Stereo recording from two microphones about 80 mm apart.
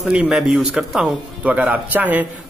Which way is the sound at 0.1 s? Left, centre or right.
Centre.